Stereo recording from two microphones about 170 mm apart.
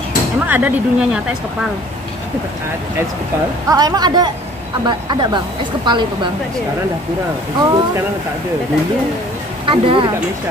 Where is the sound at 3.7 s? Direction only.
20° right (ahead or behind).